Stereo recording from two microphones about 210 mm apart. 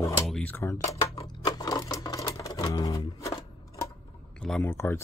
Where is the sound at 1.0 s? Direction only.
30° left (ahead or behind).